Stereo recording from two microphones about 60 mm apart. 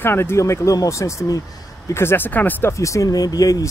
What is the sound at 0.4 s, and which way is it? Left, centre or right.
Speech, left.